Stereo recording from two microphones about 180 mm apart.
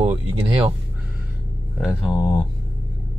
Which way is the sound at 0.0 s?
35° right (ahead or behind).